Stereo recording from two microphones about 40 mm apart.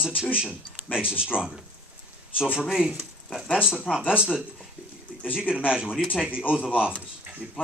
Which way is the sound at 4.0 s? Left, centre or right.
Right.